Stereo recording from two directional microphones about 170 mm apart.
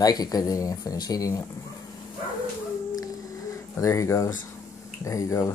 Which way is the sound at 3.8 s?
15° left (ahead or behind).